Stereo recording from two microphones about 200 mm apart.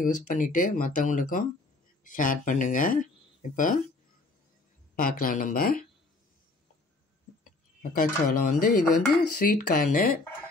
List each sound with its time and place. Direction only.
0.0 s speech: 40° left (ahead or behind)
4.9 s speech: 45° left (ahead or behind)
7.8 s speech: 40° left (ahead or behind)